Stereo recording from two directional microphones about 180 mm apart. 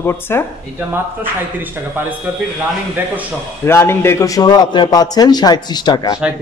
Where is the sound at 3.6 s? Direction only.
15° left (ahead or behind).